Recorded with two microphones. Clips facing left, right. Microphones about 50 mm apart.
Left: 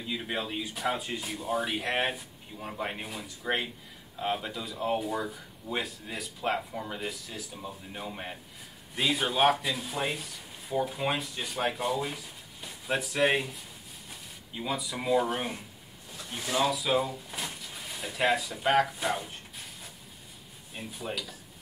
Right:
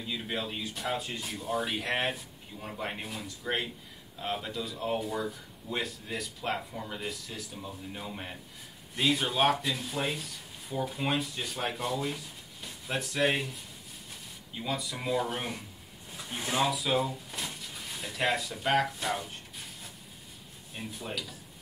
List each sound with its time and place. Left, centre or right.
0.1 s speech: centre
16.3 s speech: right
16.6 s speech: centre
20.7 s speech: centre